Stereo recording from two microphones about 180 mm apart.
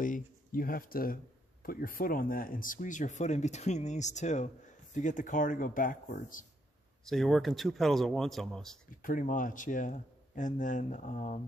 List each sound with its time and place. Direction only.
0.0 s speech: 50° left (ahead or behind)
7.1 s speech: centre (ahead or behind)
9.0 s speech: 50° left (ahead or behind)